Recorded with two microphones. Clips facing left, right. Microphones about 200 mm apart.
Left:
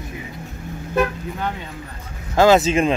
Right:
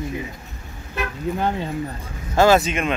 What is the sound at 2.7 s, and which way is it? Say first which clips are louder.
Speech: left 5 dB; 30° left (ahead or behind).